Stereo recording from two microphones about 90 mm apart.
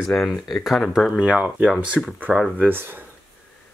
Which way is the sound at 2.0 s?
Centre (ahead or behind).